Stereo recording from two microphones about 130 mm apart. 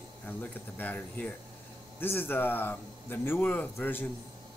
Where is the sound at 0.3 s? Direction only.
15° left (ahead or behind).